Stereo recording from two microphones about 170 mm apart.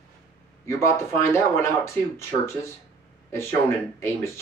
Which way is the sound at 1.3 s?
15° left (ahead or behind).